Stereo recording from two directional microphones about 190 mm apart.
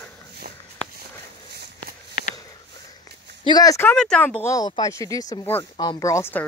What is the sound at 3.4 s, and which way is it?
Speech, 20° left (ahead or behind).